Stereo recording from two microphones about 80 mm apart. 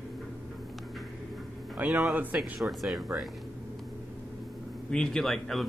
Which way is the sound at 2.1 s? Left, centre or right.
Right.